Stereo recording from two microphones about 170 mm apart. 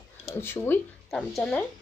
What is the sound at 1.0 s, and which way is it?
Speech, 5° left (ahead or behind).